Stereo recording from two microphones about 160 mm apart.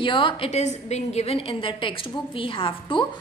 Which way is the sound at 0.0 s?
30° left (ahead or behind).